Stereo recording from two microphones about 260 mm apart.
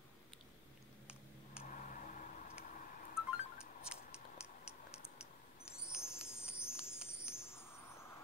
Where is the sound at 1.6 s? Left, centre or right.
Left.